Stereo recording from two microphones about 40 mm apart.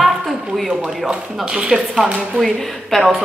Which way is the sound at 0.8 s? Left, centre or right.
Centre.